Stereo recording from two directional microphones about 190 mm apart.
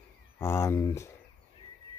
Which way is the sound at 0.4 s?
15° left (ahead or behind).